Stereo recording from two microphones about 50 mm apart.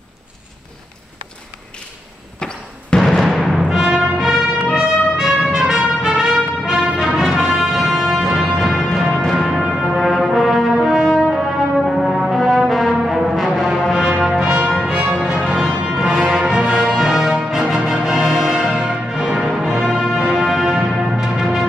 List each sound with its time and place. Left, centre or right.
2.4 s music: centre
3.2 s timpani: centre
3.6 s music: centre
9.9 s brass instrument: centre
11.3 s music: centre
12.3 s brass instrument: centre
13.9 s brass instrument: centre
14.4 s music: right
17.8 s brass instrument: centre
19.7 s music: centre
20.2 s music: centre